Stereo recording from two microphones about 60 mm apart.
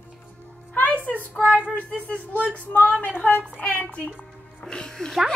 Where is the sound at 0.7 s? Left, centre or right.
Left.